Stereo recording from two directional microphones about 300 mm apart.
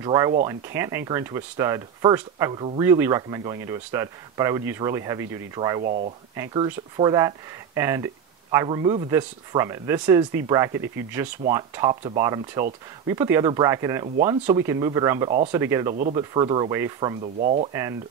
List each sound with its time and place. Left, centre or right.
0.0 s speech: centre
5.9 s speech: right
6.3 s speech: centre
11.9 s speech: right
12.2 s speech: centre
15.9 s speech: right